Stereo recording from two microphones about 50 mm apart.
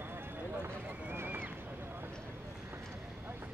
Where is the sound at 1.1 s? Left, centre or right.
Right.